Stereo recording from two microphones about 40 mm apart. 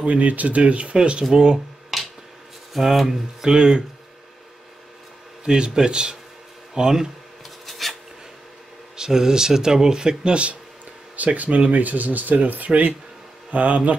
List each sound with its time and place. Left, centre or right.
0.0 s speech: right; by 1.6 s centre
1.9 s finger snapping: centre
2.7 s speech: centre
3.5 s speech: centre
5.4 s speech: centre
7.4 s filing: centre
8.9 s speech: centre
10.3 s speech: right